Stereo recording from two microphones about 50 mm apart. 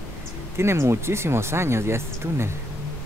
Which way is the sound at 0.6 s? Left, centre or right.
Right.